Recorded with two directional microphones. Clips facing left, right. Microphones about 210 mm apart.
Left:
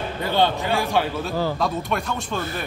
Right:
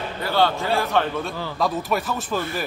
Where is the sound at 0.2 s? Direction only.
20° left (ahead or behind).